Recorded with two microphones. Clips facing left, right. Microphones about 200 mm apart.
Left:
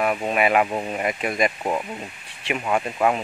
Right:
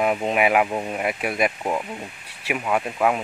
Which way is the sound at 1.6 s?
5° left (ahead or behind).